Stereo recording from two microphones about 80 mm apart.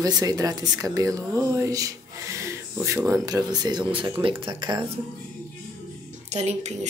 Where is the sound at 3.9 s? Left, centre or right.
Right.